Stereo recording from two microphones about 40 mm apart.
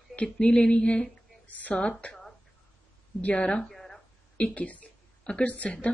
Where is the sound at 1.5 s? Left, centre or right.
Left.